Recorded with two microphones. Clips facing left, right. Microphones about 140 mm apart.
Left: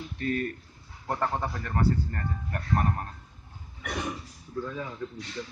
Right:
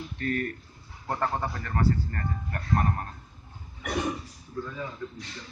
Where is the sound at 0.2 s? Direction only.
15° left (ahead or behind).